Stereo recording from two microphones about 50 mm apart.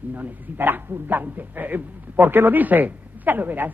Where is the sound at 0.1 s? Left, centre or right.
Right.